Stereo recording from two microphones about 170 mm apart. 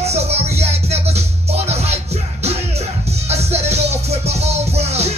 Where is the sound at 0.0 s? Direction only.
40° right (ahead or behind).